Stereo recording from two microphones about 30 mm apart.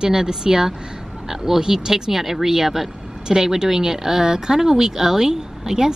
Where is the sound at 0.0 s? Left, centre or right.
Right.